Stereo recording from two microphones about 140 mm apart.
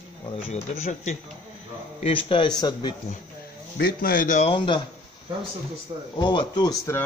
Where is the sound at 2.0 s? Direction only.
40° left (ahead or behind).